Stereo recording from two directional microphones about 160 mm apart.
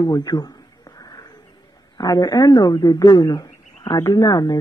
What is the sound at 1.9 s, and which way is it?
Speech, 25° left (ahead or behind).